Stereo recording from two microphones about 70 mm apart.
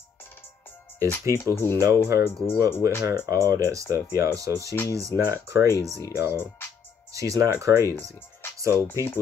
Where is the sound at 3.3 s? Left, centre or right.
Right.